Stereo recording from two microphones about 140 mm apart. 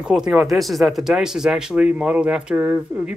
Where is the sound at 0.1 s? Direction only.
5° right (ahead or behind).